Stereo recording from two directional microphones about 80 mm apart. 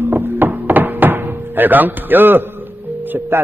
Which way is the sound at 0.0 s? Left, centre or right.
Right.